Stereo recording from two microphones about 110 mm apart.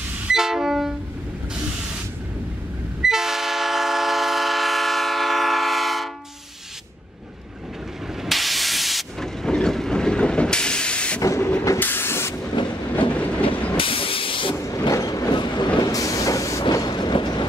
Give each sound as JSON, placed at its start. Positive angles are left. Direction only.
{"t": 0.3, "sound": "train", "side_deg": -5}
{"t": 3.0, "sound": "train", "side_deg": -5}
{"t": 8.2, "sound": "steam", "side_deg": 0}
{"t": 11.2, "sound": "a sound", "side_deg": 25}
{"t": 11.8, "sound": "vehicle", "side_deg": 20}
{"t": 12.6, "sound": "train", "side_deg": 45}
{"t": 13.1, "sound": "train", "side_deg": 10}
{"t": 13.7, "sound": "hiss", "side_deg": 55}
{"t": 14.5, "sound": "vehicle", "side_deg": 25}
{"t": 16.6, "sound": "train", "side_deg": 40}